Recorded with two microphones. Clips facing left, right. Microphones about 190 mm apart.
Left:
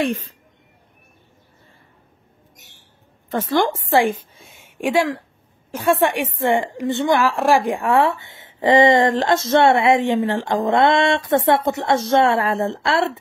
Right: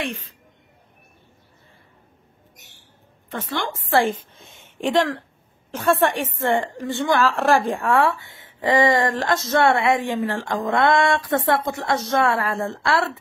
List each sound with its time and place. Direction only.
0.0 s a woman's voice: 40° left (ahead or behind)
3.3 s a woman's voice: 40° left (ahead or behind)
3.9 s a woman's voice: 10° left (ahead or behind)